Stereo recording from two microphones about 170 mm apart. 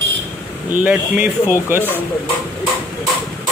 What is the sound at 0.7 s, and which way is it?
Speech, 10° right (ahead or behind).